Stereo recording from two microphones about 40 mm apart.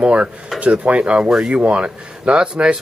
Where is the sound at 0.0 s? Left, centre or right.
Right.